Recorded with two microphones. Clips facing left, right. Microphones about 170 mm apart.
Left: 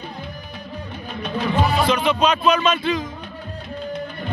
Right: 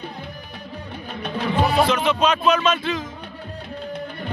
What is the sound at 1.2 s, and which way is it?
Music, 60° right (ahead or behind).